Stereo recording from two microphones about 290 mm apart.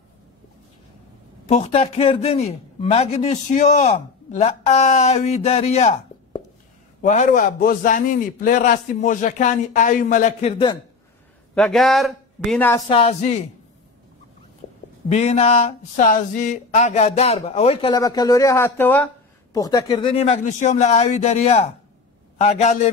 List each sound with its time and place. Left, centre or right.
1.5 s a man's voice: left
7.0 s a man's voice: left
11.5 s speech: centre; by 13.5 s left
15.0 s a man's voice: left